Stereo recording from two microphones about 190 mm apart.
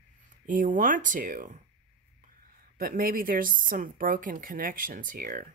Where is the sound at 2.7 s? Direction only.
50° right (ahead or behind).